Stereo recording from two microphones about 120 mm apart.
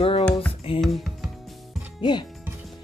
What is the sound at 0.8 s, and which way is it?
Music, centre (ahead or behind).